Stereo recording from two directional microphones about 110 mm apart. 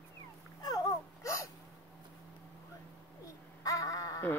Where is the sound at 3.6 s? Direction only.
30° left (ahead or behind).